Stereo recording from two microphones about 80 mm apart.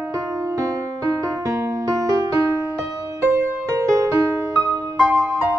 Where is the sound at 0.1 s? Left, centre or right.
Right.